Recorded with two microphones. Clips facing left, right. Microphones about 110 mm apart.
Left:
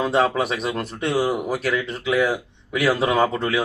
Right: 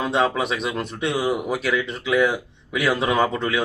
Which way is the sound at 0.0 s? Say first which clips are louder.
Left 2 dB; centre (ahead or behind).